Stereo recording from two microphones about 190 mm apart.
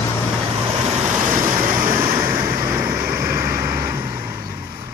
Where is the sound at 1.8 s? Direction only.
15° right (ahead or behind).